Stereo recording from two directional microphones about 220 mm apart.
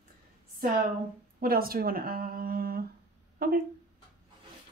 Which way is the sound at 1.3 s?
40° right (ahead or behind).